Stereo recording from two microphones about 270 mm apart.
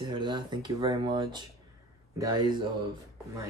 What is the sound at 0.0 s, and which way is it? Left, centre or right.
Speech, centre.